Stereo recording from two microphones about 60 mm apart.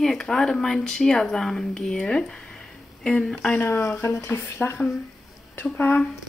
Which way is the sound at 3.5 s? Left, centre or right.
Left.